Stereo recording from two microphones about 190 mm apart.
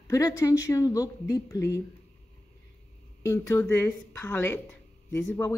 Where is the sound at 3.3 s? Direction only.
15° left (ahead or behind).